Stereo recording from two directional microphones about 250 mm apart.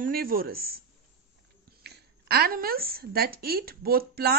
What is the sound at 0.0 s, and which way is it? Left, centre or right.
A woman's voice, right.